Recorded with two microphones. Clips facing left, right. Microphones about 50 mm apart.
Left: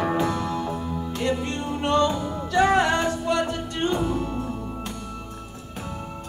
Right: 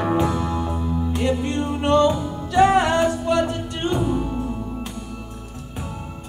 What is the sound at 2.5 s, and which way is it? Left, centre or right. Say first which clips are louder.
Music: right 4 dB; centre.